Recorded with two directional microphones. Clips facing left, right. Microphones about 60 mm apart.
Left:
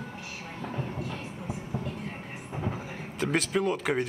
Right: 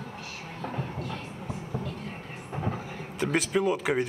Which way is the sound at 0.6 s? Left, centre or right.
Centre.